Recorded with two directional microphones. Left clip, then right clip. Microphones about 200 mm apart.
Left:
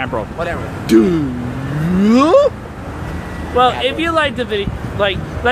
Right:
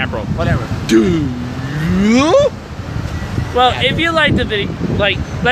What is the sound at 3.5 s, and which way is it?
Speech, centre (ahead or behind).